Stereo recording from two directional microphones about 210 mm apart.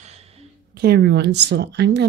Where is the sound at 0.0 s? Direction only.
30° right (ahead or behind).